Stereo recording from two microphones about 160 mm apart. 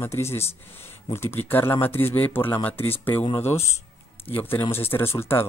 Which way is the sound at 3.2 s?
40° left (ahead or behind).